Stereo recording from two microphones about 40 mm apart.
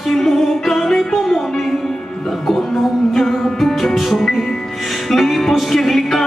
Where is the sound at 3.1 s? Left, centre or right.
Centre.